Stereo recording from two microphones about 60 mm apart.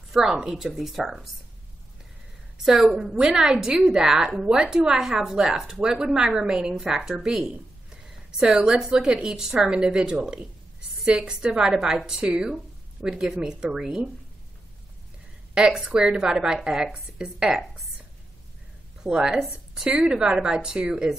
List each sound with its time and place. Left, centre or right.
0.1 s a woman's voice: centre
2.5 s speech: centre
7.9 s a sound: centre
8.4 s speech: centre
15.5 s speech: centre
19.0 s speech: centre